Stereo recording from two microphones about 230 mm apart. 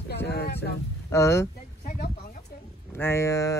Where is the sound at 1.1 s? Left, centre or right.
Centre.